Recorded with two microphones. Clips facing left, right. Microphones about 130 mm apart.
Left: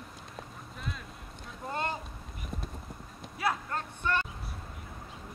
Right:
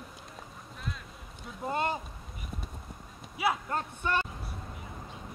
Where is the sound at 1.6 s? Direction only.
15° right (ahead or behind).